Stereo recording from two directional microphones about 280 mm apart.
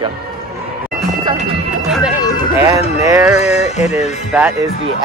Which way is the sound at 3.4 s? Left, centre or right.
Left.